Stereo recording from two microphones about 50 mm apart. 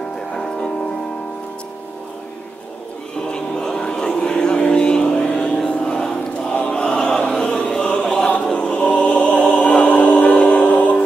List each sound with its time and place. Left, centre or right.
3.3 s a sound: centre
5.7 s choir: centre
9.5 s music: left